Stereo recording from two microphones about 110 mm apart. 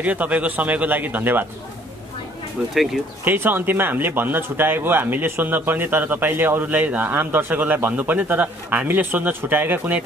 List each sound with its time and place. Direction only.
0.0 s speech: 15° right (ahead or behind)
2.7 s speech: centre (ahead or behind)
3.3 s speech: 20° right (ahead or behind)